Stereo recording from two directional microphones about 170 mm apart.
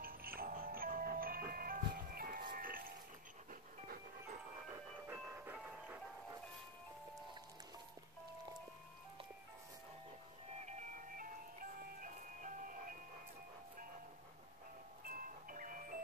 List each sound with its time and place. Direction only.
0.0 s music: 60° right (ahead or behind)
5.0 s music: 15° right (ahead or behind)
10.6 s music: 45° right (ahead or behind)
15.0 s music: 55° right (ahead or behind)